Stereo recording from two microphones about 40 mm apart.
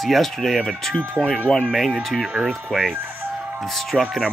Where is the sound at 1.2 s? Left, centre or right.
Centre.